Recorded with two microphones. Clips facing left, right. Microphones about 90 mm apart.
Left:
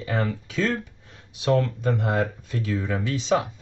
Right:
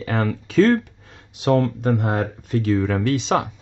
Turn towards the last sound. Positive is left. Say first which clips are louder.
# right 3 dB
turn(degrees=-70)  # may be behind; listen again after turning